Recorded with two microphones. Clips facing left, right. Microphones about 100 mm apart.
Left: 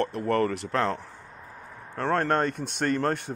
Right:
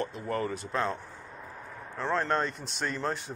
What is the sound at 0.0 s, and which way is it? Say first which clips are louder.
Speech: left 7 dB; 65° left (ahead or behind).